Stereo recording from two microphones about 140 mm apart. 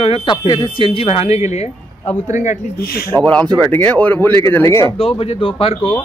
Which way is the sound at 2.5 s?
75° left (ahead or behind).